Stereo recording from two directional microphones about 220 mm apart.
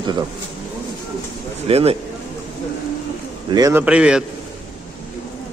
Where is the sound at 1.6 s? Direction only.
25° right (ahead or behind).